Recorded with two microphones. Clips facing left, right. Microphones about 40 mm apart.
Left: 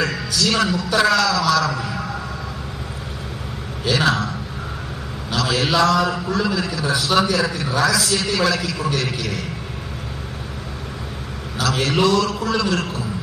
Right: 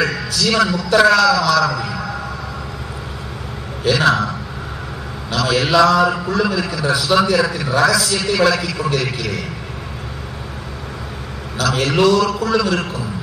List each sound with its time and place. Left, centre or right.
0.0 s a man's voice: right
3.8 s a man's voice: right
5.4 s a man's voice: right
7.1 s a man's voice: right
11.6 s a man's voice: right